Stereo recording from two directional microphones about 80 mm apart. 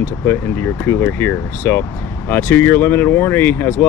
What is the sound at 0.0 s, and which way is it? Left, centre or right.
Speech, left.